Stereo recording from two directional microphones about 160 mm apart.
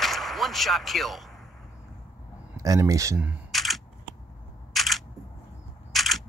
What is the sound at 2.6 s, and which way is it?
Speech, 20° right (ahead or behind).